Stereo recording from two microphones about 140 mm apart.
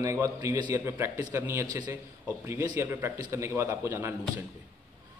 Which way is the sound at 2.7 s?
20° right (ahead or behind).